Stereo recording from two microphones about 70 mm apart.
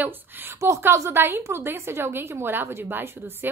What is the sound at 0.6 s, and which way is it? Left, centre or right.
A woman's voice, right.